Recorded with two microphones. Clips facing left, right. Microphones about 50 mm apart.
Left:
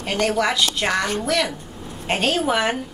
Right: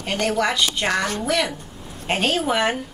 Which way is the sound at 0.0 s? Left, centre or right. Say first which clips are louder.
Left 1 dB; centre.